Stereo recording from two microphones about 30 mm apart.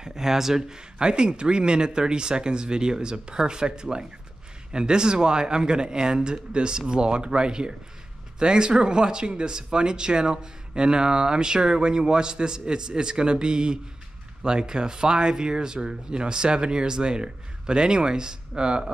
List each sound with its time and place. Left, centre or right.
0.0 s speech: centre
0.9 s speech: right